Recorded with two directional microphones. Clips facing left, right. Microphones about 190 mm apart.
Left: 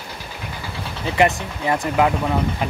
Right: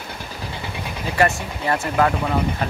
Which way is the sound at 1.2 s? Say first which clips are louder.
Left 2 dB; 20° left (ahead or behind).